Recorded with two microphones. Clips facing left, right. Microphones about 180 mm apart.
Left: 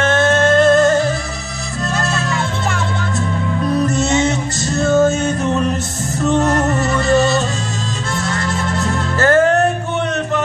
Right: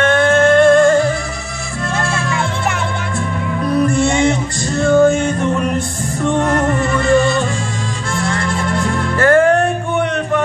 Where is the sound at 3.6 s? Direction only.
20° left (ahead or behind).